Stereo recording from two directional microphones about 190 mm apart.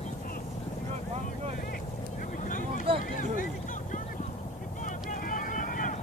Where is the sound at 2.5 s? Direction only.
45° left (ahead or behind).